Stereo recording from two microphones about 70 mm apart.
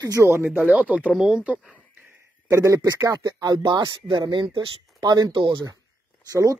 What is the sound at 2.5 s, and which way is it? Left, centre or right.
Speech, right.